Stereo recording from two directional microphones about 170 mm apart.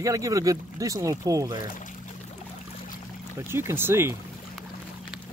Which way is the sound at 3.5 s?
15° right (ahead or behind).